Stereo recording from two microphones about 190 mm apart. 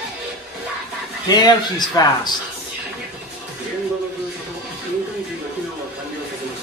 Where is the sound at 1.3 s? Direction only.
20° left (ahead or behind).